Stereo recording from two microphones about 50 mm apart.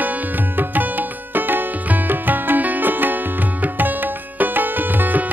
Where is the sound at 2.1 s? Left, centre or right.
Right.